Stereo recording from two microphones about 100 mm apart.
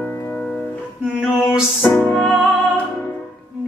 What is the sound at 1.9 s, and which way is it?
Music, centre (ahead or behind).